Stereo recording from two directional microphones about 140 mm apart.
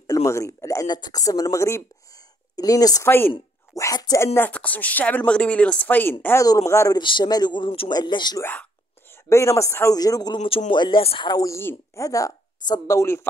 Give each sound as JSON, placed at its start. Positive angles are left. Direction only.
{"t": 0.0, "sound": "speech", "side_deg": 25}
{"t": 6.2, "sound": "speech", "side_deg": 25}
{"t": 7.0, "sound": "speech", "side_deg": 35}
{"t": 9.3, "sound": "speech", "side_deg": 20}
{"t": 11.5, "sound": "speech", "side_deg": 20}